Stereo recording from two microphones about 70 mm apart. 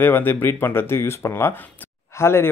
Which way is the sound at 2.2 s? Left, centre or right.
Left.